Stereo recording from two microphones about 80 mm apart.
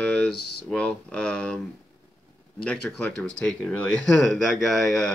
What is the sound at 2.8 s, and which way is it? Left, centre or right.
Speech, left.